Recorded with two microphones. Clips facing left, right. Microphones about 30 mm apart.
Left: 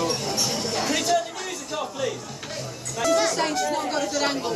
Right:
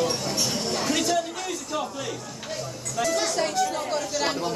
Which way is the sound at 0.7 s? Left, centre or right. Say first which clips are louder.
Left 2 dB; centre.